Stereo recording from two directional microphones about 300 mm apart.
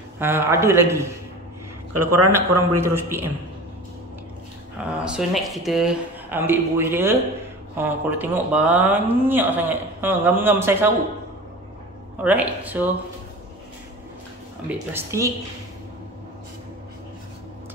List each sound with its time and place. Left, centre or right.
0.2 s speech: centre
2.0 s speech: right
2.3 s speech: centre
4.7 s speech: centre
12.2 s speech: centre
14.9 s speech: centre